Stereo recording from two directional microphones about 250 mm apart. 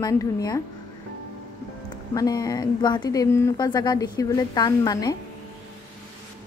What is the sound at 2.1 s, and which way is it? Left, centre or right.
A woman's voice, centre.